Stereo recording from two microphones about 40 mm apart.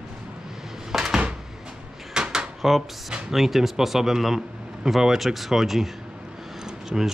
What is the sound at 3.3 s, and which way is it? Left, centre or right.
A man's voice, centre.